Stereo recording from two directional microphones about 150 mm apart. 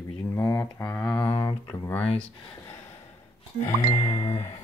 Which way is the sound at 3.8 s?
25° left (ahead or behind).